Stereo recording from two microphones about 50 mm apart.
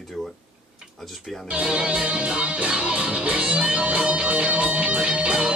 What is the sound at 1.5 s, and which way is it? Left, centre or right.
Music, right.